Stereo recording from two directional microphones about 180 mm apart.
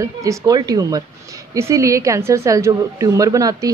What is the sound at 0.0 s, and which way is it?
A woman's voice, 15° right (ahead or behind).